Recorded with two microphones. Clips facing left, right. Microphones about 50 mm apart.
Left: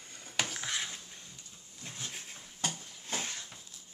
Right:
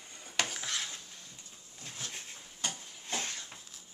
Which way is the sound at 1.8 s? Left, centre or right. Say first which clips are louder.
Even; centre.